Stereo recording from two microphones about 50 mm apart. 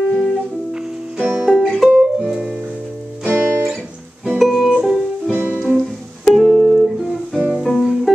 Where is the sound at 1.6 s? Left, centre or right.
Centre.